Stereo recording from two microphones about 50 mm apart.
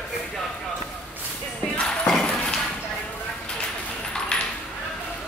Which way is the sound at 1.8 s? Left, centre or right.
Left.